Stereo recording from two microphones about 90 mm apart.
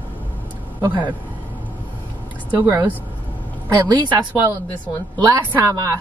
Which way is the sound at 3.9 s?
60° right (ahead or behind).